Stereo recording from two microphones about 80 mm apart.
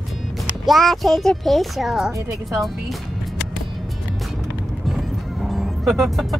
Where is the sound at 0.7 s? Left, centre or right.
Centre.